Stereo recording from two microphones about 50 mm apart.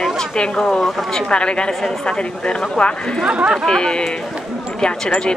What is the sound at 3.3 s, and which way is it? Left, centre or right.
Speech, centre.